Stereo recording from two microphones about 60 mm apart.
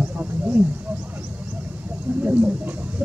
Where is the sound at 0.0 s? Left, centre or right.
Right.